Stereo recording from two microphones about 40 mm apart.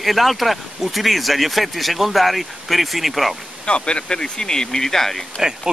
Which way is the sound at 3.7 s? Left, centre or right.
Left.